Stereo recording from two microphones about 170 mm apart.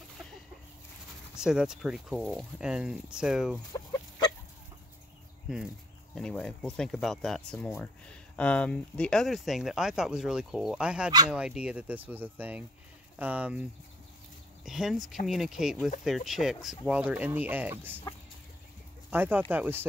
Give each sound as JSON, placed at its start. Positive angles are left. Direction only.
{"t": 1.4, "sound": "speech", "side_deg": -5}
{"t": 6.1, "sound": "speech", "side_deg": 5}
{"t": 19.0, "sound": "speech", "side_deg": -10}